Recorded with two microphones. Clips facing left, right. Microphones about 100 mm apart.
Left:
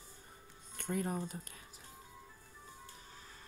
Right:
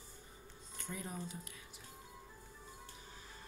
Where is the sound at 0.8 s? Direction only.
55° left (ahead or behind).